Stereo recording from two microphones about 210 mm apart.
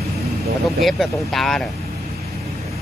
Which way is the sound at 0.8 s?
Centre (ahead or behind).